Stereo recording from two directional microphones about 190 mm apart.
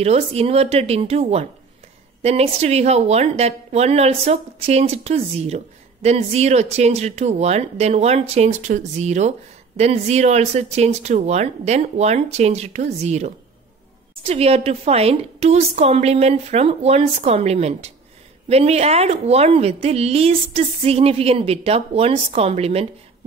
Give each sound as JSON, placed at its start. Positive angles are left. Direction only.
{"t": 0.0, "sound": "a woman's voice", "side_deg": -35}